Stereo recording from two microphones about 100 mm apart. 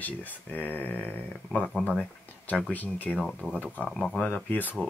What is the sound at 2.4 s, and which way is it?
Speech, 15° left (ahead or behind).